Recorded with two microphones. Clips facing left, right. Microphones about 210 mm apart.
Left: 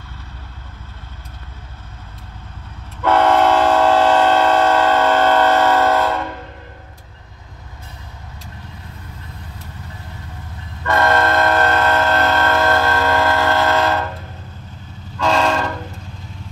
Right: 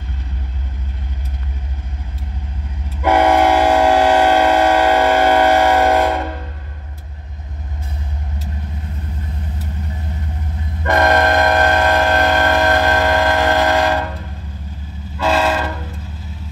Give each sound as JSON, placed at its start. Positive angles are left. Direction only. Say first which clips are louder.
{"t": 3.0, "sound": "train", "louder": "right 1 dB", "side_deg": -10}
{"t": 10.8, "sound": "train", "louder": "right 2 dB", "side_deg": -15}
{"t": 15.1, "sound": "train", "louder": "even", "side_deg": -5}